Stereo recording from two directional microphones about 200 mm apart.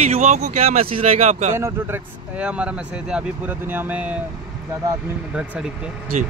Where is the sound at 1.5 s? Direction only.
10° right (ahead or behind).